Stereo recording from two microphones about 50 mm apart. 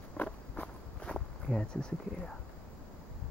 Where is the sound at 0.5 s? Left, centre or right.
Left.